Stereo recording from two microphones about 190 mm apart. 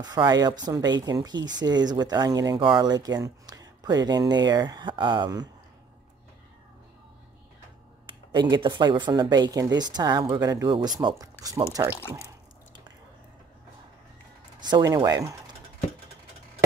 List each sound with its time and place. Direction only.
0.0 s speech: 20° right (ahead or behind)
8.3 s speech: 25° right (ahead or behind)
14.6 s speech: 20° right (ahead or behind)